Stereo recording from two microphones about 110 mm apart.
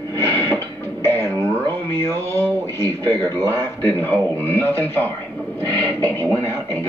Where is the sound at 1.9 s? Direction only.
20° left (ahead or behind).